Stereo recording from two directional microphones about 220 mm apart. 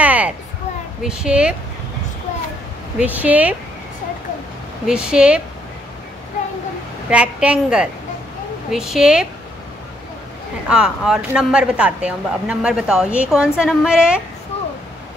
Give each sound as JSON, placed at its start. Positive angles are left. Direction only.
{"t": 0.0, "sound": "a sound", "side_deg": -5}
{"t": 1.0, "sound": "speech", "side_deg": -5}
{"t": 3.0, "sound": "speech", "side_deg": -5}
{"t": 4.8, "sound": "speech", "side_deg": -5}
{"t": 7.1, "sound": "speech", "side_deg": -5}
{"t": 10.7, "sound": "speech", "side_deg": -5}
{"t": 14.5, "sound": "a sound", "side_deg": 25}